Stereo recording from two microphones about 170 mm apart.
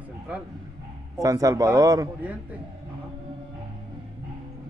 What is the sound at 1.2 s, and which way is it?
A man's voice, 20° right (ahead or behind).